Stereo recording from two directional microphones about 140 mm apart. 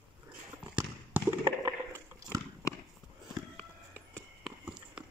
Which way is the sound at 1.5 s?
20° right (ahead or behind).